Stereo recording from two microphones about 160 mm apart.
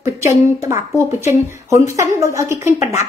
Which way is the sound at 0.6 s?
20° right (ahead or behind).